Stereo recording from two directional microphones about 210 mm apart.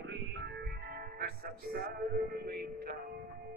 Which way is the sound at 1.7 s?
45° right (ahead or behind).